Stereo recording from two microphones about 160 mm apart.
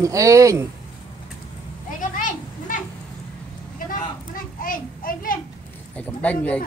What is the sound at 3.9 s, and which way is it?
Children playing, 60° left (ahead or behind).